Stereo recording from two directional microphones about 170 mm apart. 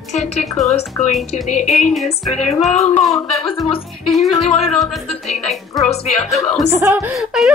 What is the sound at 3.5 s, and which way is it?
A woman's voice, 30° left (ahead or behind).